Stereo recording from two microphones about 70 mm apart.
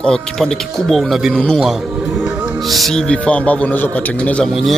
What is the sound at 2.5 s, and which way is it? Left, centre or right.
Speech, centre.